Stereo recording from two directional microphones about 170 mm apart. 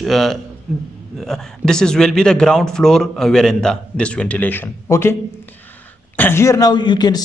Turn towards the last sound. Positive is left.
turn(degrees=25)  # may be behind; listen again after turning